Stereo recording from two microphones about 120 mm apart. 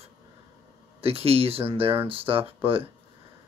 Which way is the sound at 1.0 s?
55° right (ahead or behind).